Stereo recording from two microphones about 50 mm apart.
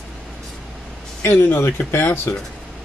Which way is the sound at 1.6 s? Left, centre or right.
Left.